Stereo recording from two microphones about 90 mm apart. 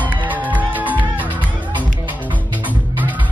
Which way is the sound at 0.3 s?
20° right (ahead or behind).